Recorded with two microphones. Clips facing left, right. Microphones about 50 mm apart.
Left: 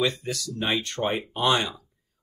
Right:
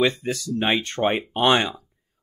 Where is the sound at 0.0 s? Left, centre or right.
Right.